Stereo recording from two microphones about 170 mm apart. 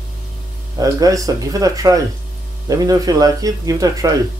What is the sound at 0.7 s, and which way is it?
Speech, 20° right (ahead or behind).